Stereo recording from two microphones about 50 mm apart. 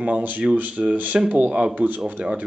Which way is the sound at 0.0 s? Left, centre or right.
Right.